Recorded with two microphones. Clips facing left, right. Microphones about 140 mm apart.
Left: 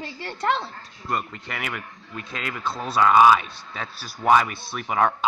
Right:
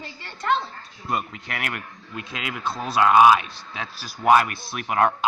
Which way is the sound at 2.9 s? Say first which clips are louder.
Right 1 dB; 10° right (ahead or behind).